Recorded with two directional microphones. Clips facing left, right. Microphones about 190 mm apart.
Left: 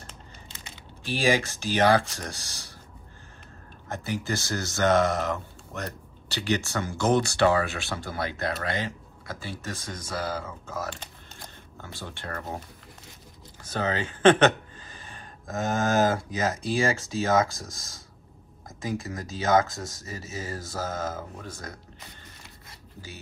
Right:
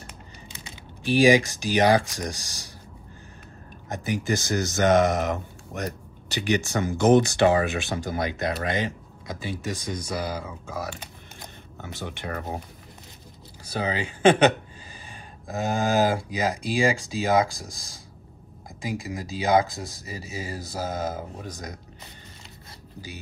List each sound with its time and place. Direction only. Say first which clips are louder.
1.0 s speech: right 7 dB; 15° right (ahead or behind)
3.9 s speech: right 4 dB; 15° right (ahead or behind)
13.7 s speech: even; 10° right (ahead or behind)